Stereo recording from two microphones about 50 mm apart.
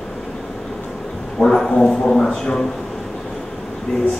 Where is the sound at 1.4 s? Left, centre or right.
Centre.